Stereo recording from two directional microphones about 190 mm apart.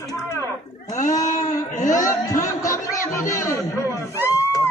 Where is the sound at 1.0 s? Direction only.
40° left (ahead or behind).